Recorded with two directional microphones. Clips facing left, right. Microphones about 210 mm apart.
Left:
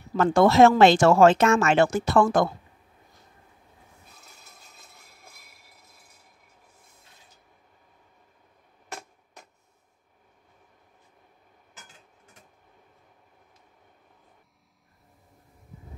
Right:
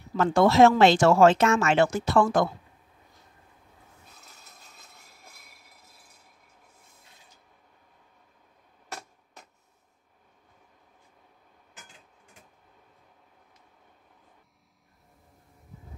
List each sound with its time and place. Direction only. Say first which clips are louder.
0.2 s speech: left 2 dB; 50° left (ahead or behind)